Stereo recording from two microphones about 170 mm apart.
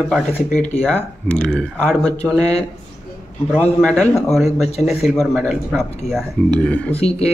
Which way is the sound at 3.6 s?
5° left (ahead or behind).